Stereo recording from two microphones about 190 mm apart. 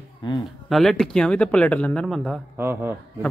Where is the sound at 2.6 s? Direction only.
10° right (ahead or behind).